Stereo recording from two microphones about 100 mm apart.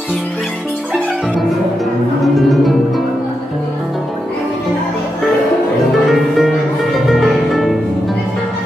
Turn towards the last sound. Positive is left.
turn(degrees=0)  # may be behind; listen again after turning